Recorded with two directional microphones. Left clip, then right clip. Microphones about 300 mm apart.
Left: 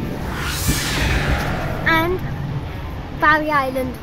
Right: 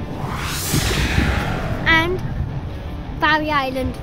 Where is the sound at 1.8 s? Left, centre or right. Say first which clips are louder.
Right 1 dB; right.